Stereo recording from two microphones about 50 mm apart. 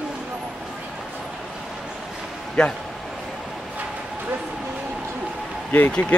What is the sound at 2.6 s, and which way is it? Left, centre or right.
Speech, centre.